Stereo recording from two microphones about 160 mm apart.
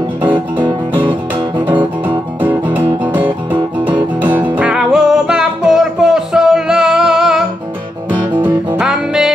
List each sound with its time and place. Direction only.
1.7 s music: 30° right (ahead or behind)
2.4 s music: 10° right (ahead or behind)
3.5 s music: 30° right (ahead or behind)
4.6 s music: 5° right (ahead or behind)